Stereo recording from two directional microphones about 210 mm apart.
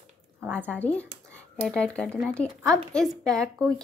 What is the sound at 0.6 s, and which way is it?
Speech, 5° left (ahead or behind).